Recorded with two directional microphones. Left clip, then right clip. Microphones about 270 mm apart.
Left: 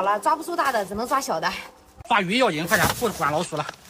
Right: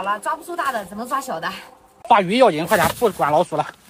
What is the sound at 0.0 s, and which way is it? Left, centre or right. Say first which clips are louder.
Speech: left 2 dB; left.